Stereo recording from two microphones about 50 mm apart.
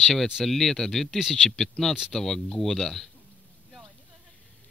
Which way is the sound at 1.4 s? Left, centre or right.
Centre.